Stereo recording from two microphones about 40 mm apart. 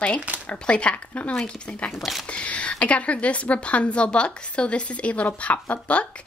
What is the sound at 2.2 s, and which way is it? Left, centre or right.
A woman's voice, left.